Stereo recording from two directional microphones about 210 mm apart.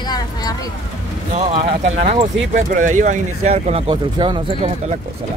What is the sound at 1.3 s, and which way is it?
Speech, 30° right (ahead or behind).